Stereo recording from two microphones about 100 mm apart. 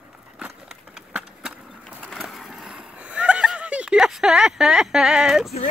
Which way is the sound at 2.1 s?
Centre (ahead or behind).